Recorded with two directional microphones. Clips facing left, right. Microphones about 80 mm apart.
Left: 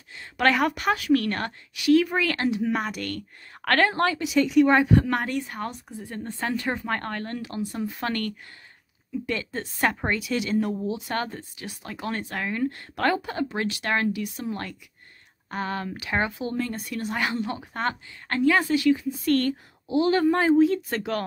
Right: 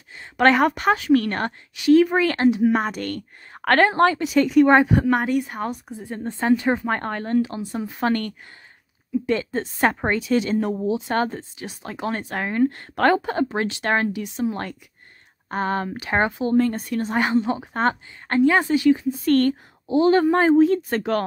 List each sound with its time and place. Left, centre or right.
0.1 s speech: right
5.1 s speech: centre
12.4 s speech: right
15.5 s speech: right